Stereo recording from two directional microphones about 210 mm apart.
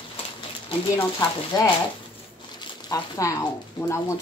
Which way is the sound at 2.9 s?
15° left (ahead or behind).